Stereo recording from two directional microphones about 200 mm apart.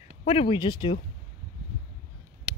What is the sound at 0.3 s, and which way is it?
Speech, 25° left (ahead or behind).